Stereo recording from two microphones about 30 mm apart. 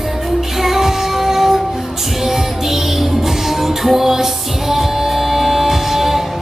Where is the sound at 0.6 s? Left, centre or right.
Centre.